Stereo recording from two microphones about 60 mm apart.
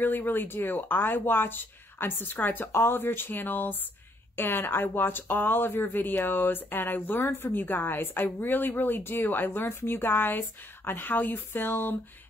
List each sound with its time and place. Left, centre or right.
0.0 s speech: left